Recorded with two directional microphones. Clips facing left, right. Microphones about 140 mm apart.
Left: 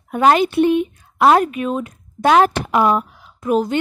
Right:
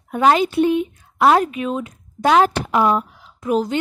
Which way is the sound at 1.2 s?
50° left (ahead or behind).